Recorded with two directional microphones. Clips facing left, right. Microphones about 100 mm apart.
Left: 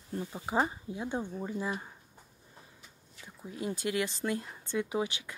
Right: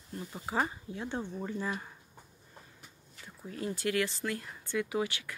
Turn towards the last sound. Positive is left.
turn(degrees=20)  # may be behind; listen again after turning